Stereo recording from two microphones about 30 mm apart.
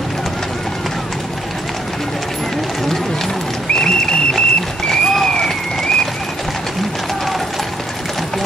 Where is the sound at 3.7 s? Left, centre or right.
Left.